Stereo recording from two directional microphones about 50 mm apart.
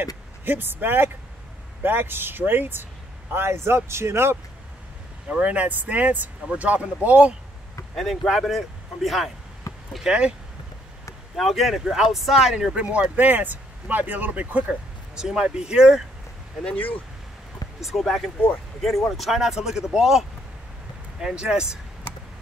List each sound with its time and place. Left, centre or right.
0.0 s speech: right
3.3 s speech: right
5.3 s speech: right
7.9 s speech: centre
9.7 s a sound: left
10.0 s speech: right
11.3 s speech: centre
13.1 s speech: right
14.7 s speech: centre
17.7 s speech: centre
19.3 s speech: centre